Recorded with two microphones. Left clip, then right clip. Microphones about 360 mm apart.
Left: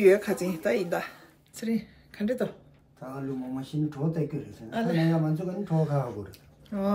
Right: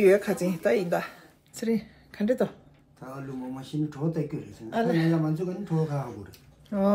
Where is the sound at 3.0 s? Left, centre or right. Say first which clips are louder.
Left 2 dB; centre.